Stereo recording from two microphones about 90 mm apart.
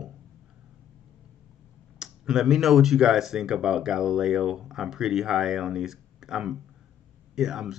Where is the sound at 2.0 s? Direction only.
5° right (ahead or behind).